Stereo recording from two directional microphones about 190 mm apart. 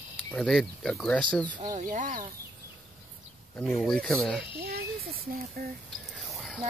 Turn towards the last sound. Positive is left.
turn(degrees=0)  # may be behind; listen again after turning